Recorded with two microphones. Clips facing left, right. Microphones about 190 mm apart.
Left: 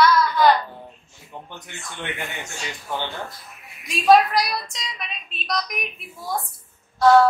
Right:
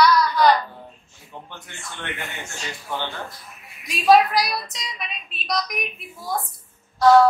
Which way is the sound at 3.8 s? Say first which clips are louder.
Even; centre (ahead or behind).